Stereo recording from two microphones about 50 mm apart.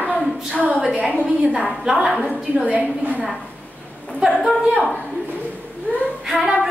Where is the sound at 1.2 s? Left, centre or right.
Right.